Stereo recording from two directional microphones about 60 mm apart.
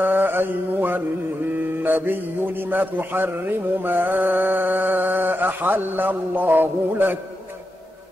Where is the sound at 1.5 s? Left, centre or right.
Right.